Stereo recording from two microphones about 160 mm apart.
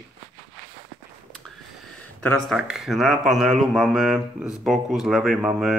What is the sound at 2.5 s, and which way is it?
Speech, 5° right (ahead or behind).